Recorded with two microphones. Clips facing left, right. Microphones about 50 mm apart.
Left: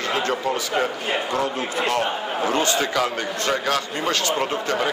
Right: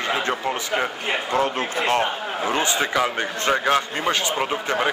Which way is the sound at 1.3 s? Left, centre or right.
Right.